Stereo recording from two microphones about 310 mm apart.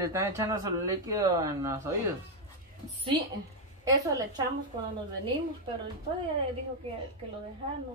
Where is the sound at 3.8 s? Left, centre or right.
Centre.